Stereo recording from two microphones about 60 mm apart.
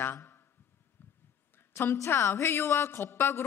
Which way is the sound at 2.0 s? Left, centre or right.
Left.